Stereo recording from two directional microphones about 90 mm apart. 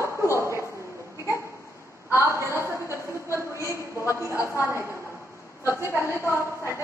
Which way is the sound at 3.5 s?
35° left (ahead or behind).